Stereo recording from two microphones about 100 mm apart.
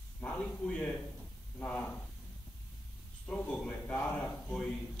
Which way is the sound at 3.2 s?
10° left (ahead or behind).